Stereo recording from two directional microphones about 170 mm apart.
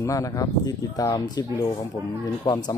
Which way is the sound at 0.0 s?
20° left (ahead or behind).